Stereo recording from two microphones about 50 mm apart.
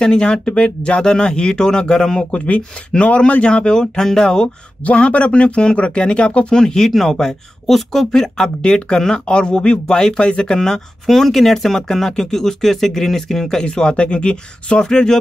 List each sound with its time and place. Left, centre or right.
0.0 s speech: centre
2.3 s speech: left
4.8 s speech: left
6.5 s speech: centre
13.7 s speech: centre